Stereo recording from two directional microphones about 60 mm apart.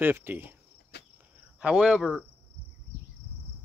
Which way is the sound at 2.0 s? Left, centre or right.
Centre.